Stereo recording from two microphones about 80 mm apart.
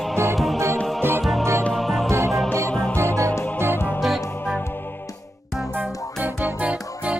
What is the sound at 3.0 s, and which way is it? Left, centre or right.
Music, right.